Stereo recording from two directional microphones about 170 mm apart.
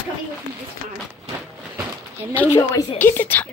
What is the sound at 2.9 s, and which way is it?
Speech, 10° left (ahead or behind).